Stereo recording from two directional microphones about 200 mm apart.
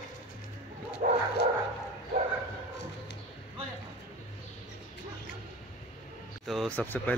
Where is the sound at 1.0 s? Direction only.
45° right (ahead or behind).